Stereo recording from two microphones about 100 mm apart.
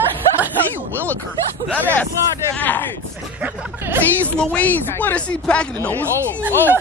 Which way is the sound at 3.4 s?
20° right (ahead or behind).